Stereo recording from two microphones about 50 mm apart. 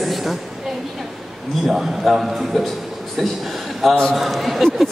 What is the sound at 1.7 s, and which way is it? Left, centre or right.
A man's voice, centre.